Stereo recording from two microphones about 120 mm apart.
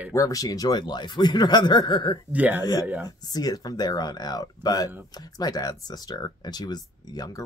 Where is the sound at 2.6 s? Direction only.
35° left (ahead or behind).